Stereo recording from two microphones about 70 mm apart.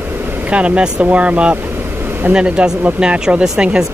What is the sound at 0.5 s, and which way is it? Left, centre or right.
Speech, centre.